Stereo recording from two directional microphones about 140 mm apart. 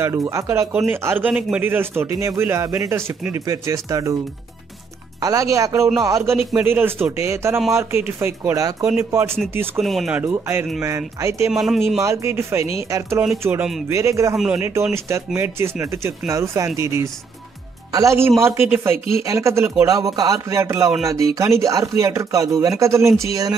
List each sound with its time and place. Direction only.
0.0 s a man's voice: 20° right (ahead or behind)
5.2 s a man's voice: 25° right (ahead or behind)
9.8 s speech: centre (ahead or behind)
10.1 s a man's voice: 15° right (ahead or behind)
11.5 s speech: centre (ahead or behind)
12.0 s a man's voice: 20° right (ahead or behind)
14.3 s speech: 5° right (ahead or behind)
14.6 s a man's voice: 20° right (ahead or behind)